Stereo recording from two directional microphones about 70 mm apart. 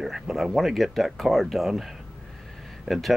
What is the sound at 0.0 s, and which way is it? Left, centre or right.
Speech, centre.